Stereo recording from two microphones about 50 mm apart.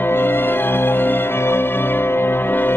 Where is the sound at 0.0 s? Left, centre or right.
Left.